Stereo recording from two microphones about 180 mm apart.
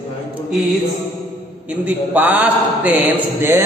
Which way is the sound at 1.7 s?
10° right (ahead or behind).